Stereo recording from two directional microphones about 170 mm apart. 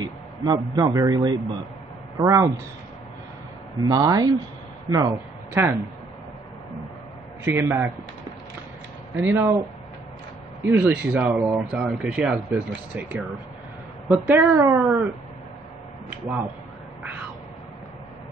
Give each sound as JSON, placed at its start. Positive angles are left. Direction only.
{"t": 0.0, "sound": "a man's voice", "side_deg": -25}
{"t": 3.8, "sound": "speech", "side_deg": -25}
{"t": 7.4, "sound": "speech", "side_deg": -15}
{"t": 9.2, "sound": "speech", "side_deg": -15}
{"t": 10.6, "sound": "a woman's voice", "side_deg": -15}
{"t": 14.3, "sound": "speech", "side_deg": -15}